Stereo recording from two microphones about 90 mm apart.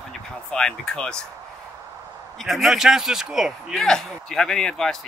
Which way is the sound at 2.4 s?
Centre (ahead or behind).